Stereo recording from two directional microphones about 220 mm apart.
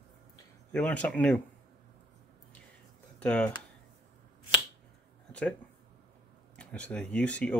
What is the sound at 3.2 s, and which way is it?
Speech, 5° left (ahead or behind).